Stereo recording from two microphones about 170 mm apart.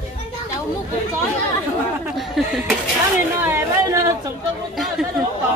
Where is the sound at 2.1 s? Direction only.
Centre (ahead or behind).